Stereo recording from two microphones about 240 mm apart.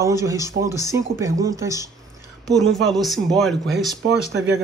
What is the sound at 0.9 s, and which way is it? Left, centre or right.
Speech, centre.